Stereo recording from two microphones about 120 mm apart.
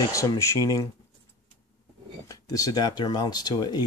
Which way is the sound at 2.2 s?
30° left (ahead or behind).